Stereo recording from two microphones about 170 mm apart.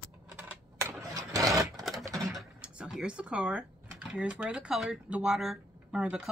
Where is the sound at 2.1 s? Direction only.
Centre (ahead or behind).